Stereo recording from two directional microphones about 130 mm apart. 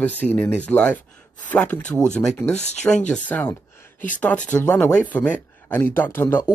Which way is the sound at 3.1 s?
15° left (ahead or behind).